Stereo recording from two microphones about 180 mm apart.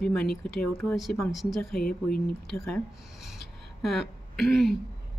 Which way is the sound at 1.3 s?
Centre (ahead or behind).